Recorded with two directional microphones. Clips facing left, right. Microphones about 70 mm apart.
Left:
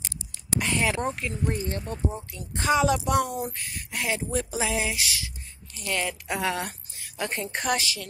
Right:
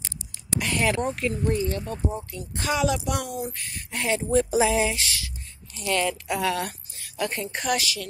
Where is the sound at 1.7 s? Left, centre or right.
Left.